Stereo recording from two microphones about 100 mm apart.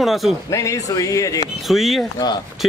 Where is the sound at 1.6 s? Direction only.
Centre (ahead or behind).